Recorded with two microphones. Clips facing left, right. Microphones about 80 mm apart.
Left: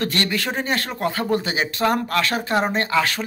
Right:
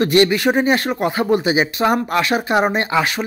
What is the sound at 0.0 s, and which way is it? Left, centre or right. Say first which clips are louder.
Speech: right 9 dB; centre.